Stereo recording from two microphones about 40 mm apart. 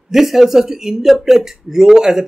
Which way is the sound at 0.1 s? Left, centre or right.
Centre.